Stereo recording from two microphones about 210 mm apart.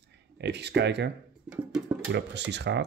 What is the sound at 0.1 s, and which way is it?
Speech, 55° right (ahead or behind).